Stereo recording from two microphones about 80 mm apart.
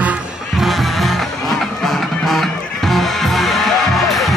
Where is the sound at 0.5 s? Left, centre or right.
Centre.